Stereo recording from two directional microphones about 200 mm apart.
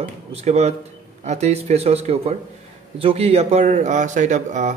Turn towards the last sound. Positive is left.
turn(degrees=-35)  # may be behind; listen again after turning